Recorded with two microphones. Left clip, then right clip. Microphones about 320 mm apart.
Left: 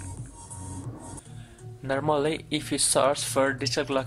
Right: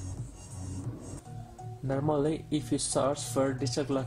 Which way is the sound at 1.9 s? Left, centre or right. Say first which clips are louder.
Left 5 dB; left.